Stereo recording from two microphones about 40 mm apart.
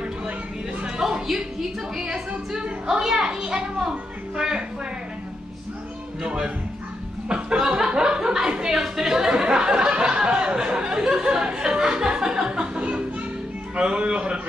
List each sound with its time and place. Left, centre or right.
0.8 s music: centre
2.0 s a woman's voice: centre
6.2 s a man's voice: right
7.2 s chuckle: right
8.5 s a sound: centre
13.7 s a man's voice: right